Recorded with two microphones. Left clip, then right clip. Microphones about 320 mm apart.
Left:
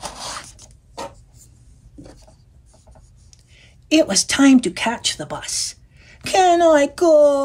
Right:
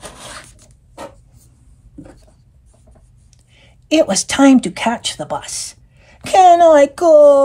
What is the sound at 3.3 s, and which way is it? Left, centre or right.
Speech, centre.